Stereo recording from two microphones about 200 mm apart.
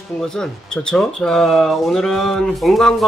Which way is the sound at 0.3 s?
5° left (ahead or behind).